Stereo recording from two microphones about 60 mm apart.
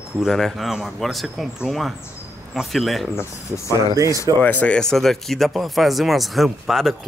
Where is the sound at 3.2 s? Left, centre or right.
Left.